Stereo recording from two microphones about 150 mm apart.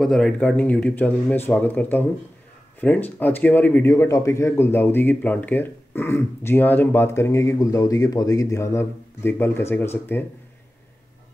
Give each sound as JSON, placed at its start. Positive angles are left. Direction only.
{"t": 0.0, "sound": "a man's voice", "side_deg": 5}